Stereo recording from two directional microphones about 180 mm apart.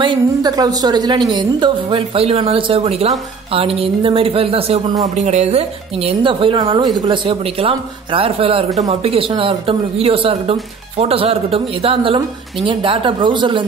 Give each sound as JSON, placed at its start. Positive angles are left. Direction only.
{"t": 0.0, "sound": "a woman's voice", "side_deg": -25}